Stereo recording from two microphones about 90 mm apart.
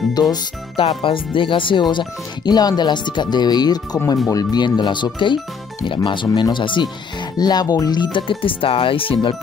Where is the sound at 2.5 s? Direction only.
50° left (ahead or behind).